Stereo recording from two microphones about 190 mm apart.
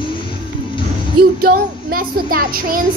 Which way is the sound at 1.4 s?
50° right (ahead or behind).